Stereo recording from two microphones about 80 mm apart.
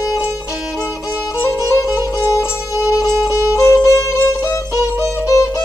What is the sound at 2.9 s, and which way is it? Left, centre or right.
Music, left.